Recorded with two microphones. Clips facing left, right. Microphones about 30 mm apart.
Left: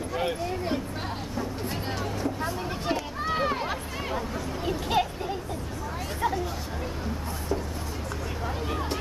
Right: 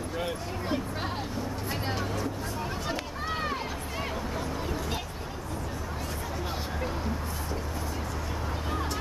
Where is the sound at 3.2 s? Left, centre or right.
Centre.